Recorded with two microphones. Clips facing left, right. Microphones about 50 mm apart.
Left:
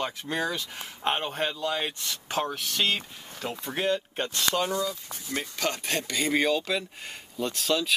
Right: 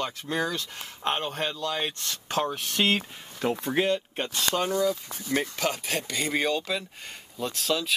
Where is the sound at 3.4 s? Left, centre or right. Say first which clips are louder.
Right 7 dB; right.